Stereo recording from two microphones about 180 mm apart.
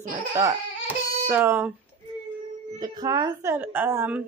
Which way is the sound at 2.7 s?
20° right (ahead or behind).